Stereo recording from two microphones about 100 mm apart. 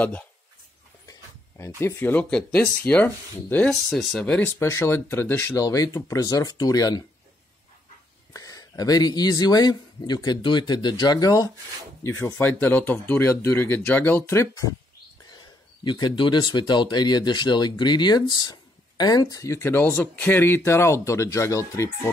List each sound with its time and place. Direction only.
1.8 s speech: 20° left (ahead or behind)
3.9 s speech: 5° left (ahead or behind)
4.6 s speech: 25° left (ahead or behind)
5.6 s speech: 35° left (ahead or behind)
8.3 s speech: 35° left (ahead or behind)
12.0 s speech: 25° left (ahead or behind)
15.3 s speech: 45° left (ahead or behind); by 21.9 s 30° left (ahead or behind)